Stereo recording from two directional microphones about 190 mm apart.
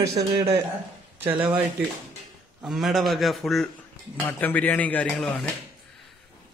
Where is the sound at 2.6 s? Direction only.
Centre (ahead or behind).